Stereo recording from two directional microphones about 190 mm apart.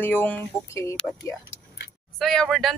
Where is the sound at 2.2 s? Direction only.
5° left (ahead or behind).